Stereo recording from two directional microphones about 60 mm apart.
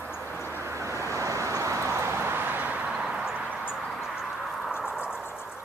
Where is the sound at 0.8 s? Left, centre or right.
Right.